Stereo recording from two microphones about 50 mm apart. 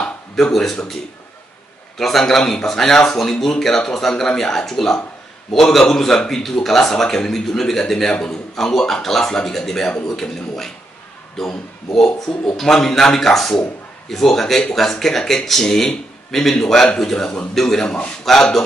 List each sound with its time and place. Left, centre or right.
0.4 s a man's voice: centre
2.0 s a man's voice: centre
18.2 s a man's voice: centre